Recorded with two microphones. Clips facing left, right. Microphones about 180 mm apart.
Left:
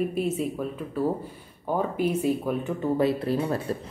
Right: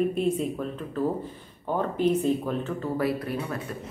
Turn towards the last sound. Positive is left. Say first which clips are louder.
# left 5 dB
turn(degrees=30)  # may be behind; listen again after turning